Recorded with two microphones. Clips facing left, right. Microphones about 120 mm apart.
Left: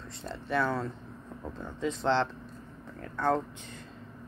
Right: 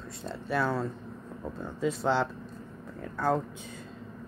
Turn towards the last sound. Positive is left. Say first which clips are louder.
# even
turn(degrees=-10)  # may be behind; listen again after turning